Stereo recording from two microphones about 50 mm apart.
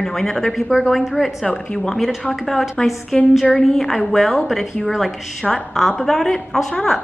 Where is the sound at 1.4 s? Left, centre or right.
Centre.